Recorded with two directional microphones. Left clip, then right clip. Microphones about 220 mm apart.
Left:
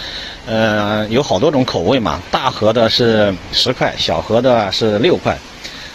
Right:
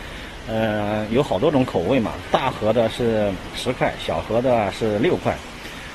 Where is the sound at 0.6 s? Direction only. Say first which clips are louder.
Left 7 dB; 20° left (ahead or behind).